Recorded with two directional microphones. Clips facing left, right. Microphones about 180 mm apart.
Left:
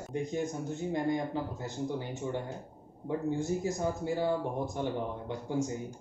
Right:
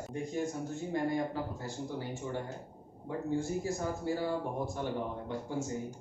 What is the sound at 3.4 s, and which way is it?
Speech, 20° left (ahead or behind).